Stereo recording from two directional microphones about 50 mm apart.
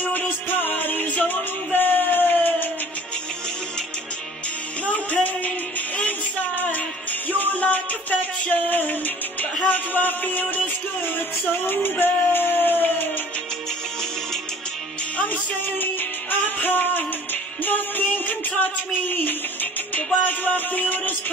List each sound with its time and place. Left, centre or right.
0.0 s music: left
4.8 s music: left
11.6 s speech: left
15.1 s music: left